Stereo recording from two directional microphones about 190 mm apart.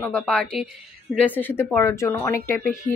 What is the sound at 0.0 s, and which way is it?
A woman's voice, 10° left (ahead or behind).